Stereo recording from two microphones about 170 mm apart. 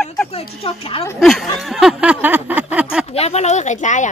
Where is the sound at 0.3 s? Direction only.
35° left (ahead or behind).